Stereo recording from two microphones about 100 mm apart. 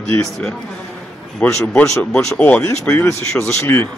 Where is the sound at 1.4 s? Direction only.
20° left (ahead or behind).